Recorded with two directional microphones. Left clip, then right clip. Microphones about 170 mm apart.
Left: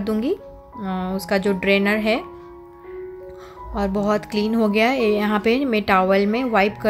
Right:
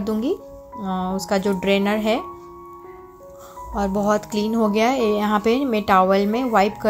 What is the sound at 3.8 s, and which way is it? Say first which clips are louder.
A woman's voice: right 1 dB; 10° left (ahead or behind).